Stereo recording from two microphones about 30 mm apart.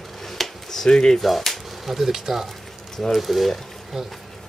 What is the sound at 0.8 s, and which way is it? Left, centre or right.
Speech, centre.